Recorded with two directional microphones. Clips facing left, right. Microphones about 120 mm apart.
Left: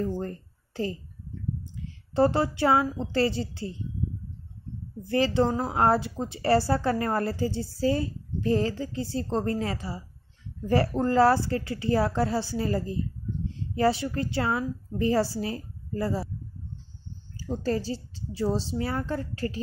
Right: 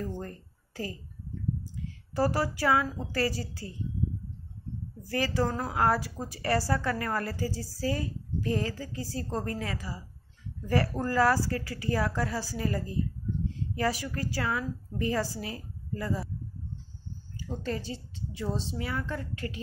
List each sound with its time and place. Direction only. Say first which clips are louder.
0.0 s a sound: left 6 dB; 30° left (ahead or behind)
2.1 s a woman's voice: left 5 dB; 25° left (ahead or behind)
5.0 s a woman's voice: left 5 dB; 25° left (ahead or behind)
17.4 s a woman's voice: left 6 dB; 35° left (ahead or behind)